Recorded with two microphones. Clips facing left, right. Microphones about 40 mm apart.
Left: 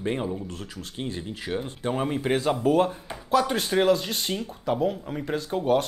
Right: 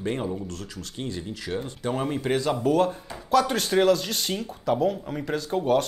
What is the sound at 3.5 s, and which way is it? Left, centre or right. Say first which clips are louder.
Speech: right 1 dB; centre.